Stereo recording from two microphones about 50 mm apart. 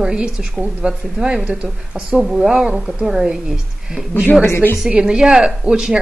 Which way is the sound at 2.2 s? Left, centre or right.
Centre.